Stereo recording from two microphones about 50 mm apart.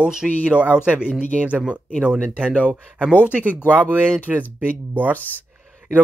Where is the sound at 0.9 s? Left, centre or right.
Left.